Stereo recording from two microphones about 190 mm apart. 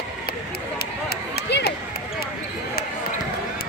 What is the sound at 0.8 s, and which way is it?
Run, 55° left (ahead or behind).